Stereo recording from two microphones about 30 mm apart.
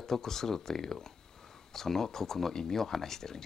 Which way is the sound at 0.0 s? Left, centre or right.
Centre.